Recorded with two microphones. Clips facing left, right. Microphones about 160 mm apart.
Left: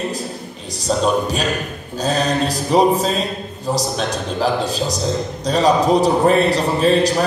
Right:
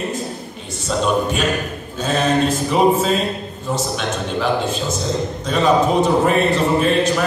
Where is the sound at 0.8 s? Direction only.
35° left (ahead or behind).